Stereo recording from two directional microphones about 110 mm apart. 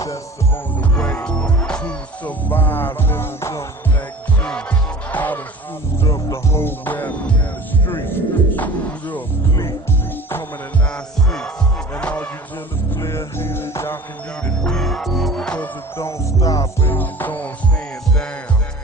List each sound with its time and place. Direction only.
0.7 s music: 10° left (ahead or behind); by 3.6 s 25° left (ahead or behind)
4.4 s music: 10° left (ahead or behind)
6.0 s music: 30° left (ahead or behind)
12.0 s music: 10° left (ahead or behind)
12.9 s music: 25° left (ahead or behind)
14.6 s music: 5° left (ahead or behind)
16.0 s music: 30° left (ahead or behind)
16.8 s music: 15° left (ahead or behind)